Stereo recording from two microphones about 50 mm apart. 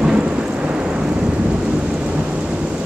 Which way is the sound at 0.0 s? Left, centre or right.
Centre.